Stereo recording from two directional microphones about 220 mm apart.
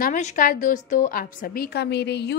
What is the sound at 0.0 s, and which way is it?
A woman's voice, 35° left (ahead or behind).